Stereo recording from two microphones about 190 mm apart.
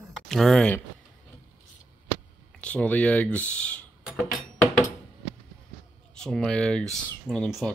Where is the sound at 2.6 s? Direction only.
5° left (ahead or behind).